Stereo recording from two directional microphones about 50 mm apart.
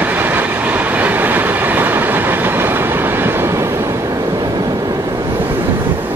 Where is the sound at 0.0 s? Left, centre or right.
Right.